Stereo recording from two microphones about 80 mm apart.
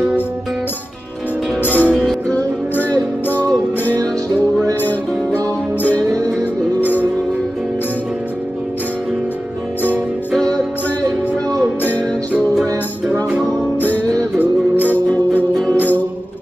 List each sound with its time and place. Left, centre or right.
1.6 s music: left
2.0 s music: centre
2.3 s music: left
15.7 s music: left